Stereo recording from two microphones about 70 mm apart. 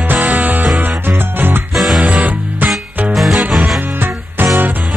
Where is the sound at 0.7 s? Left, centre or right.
Right.